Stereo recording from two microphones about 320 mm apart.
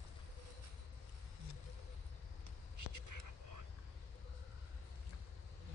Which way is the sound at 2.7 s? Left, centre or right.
Right.